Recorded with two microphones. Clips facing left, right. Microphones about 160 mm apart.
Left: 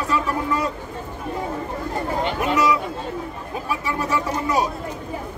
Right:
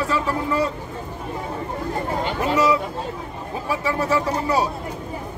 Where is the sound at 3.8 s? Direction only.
30° right (ahead or behind).